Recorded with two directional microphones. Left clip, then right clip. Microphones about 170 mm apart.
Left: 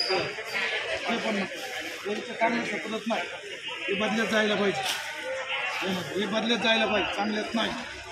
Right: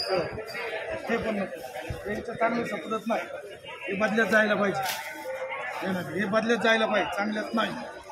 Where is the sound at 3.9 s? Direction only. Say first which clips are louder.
Right 4 dB; 25° right (ahead or behind).